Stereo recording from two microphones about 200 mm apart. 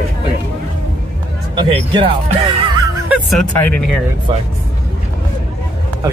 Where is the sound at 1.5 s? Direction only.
25° right (ahead or behind).